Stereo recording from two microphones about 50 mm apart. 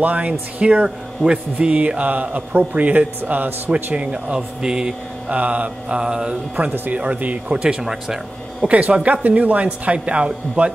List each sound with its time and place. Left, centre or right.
0.0 s a man's voice: right
3.7 s speech: right
5.3 s speech: right
6.9 s speech: right
7.8 s speech: centre
8.6 s speech: right